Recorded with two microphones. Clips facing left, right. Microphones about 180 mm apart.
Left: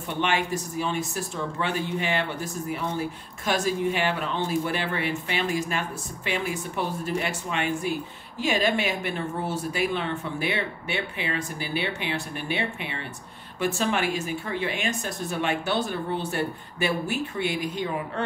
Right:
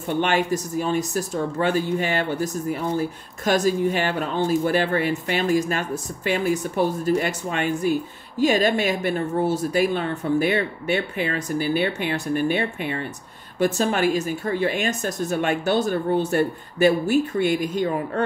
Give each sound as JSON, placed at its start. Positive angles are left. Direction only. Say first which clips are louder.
{"t": 0.2, "sound": "speech", "louder": "right 3 dB", "side_deg": -45}